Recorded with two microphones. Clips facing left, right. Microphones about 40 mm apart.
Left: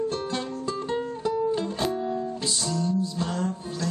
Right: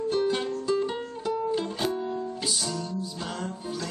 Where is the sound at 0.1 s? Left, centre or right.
Right.